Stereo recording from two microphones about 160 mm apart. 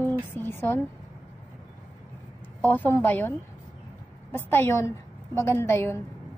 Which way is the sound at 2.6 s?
10° left (ahead or behind).